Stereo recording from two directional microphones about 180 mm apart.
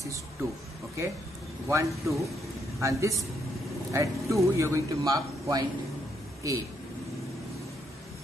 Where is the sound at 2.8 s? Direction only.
15° right (ahead or behind).